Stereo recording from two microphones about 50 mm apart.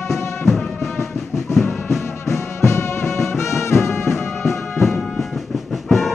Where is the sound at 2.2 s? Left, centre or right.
Left.